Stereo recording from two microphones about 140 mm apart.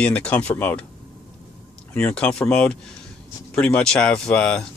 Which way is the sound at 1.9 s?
5° left (ahead or behind).